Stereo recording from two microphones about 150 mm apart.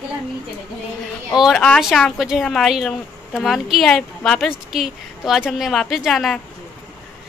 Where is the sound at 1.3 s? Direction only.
Centre (ahead or behind).